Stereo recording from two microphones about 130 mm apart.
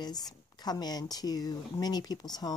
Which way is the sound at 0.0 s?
30° left (ahead or behind).